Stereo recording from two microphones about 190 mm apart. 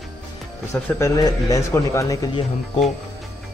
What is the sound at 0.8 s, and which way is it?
Speech, 15° left (ahead or behind).